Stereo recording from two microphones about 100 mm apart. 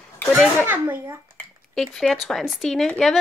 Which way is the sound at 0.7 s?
20° right (ahead or behind).